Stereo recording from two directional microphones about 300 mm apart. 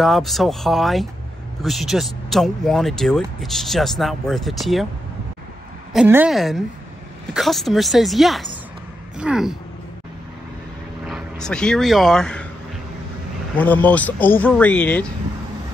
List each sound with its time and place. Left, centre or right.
0.0 s speech: centre
5.9 s speech: centre
11.1 s speech: centre
13.6 s speech: centre